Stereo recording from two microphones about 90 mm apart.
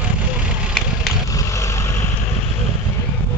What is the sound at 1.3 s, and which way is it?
Vehicle, 35° left (ahead or behind).